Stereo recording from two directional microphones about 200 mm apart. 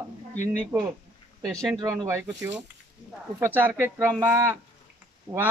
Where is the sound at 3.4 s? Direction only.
10° right (ahead or behind).